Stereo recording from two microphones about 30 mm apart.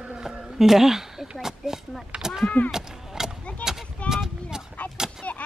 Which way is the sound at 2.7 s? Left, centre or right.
Centre.